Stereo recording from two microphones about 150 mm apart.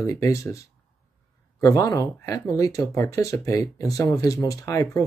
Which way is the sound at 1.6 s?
20° left (ahead or behind).